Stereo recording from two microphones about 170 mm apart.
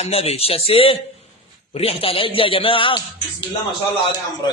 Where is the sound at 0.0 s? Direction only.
35° left (ahead or behind).